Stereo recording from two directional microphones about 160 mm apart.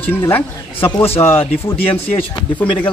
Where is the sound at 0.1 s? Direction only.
15° left (ahead or behind).